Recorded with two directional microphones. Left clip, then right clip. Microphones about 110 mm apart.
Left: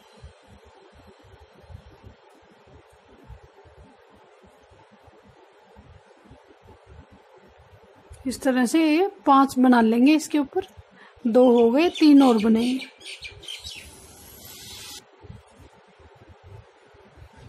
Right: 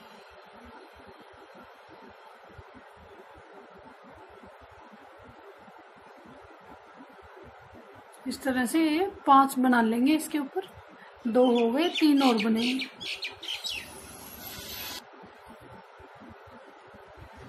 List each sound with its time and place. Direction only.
8.3 s a woman's voice: 65° left (ahead or behind)